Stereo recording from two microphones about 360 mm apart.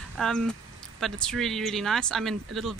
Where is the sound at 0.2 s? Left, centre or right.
Centre.